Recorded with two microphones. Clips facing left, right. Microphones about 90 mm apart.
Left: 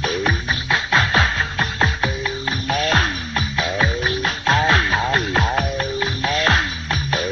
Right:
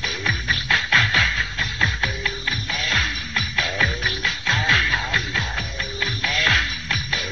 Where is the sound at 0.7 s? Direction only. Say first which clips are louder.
Left 2 dB; 25° left (ahead or behind).